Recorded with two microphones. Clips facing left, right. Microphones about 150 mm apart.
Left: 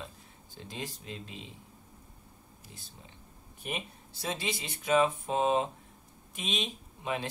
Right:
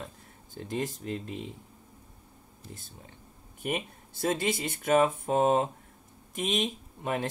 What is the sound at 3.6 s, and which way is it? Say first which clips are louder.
Speech: right 6 dB; 50° right (ahead or behind).